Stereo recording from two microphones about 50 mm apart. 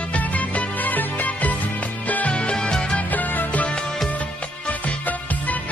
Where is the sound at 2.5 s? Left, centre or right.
Centre.